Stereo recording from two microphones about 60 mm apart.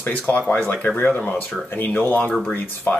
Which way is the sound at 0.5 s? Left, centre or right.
Left.